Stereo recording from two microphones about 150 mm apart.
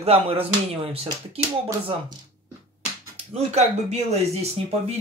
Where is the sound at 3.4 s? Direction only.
45° right (ahead or behind).